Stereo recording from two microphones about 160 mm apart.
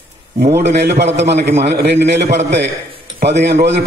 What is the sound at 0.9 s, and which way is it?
A man's voice, 90° right.